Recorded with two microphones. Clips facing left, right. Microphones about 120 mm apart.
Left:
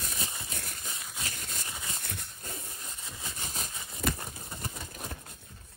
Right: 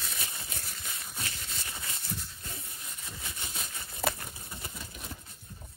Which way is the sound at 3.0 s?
25° left (ahead or behind).